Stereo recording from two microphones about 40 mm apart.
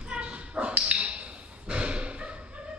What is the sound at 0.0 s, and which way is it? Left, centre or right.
Dog, right.